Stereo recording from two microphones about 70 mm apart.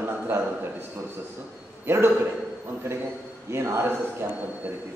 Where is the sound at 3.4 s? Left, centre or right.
Right.